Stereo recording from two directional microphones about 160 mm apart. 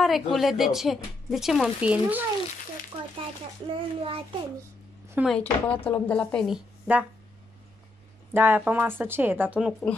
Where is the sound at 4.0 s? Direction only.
35° right (ahead or behind).